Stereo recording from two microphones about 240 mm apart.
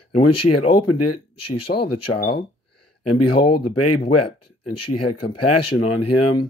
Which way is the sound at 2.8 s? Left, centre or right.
Left.